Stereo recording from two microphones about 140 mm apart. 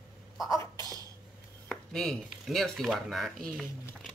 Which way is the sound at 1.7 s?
5° left (ahead or behind).